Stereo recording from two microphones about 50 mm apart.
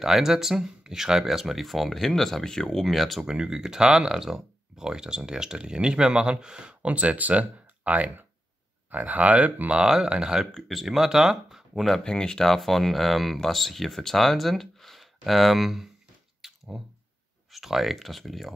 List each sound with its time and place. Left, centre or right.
0.0 s speech: centre
3.3 s speech: centre
9.8 s speech: centre
10.5 s speech: centre
12.0 s speech: centre
16.4 s squish: centre
17.5 s speech: centre